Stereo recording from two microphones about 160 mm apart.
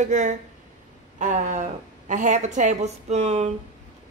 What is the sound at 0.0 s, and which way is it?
A woman's voice, 50° right (ahead or behind).